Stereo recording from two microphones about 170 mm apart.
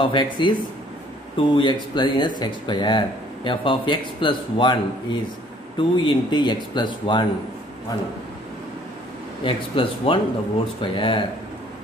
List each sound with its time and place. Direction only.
0.0 s speech: 30° left (ahead or behind)
9.4 s speech: 30° left (ahead or behind)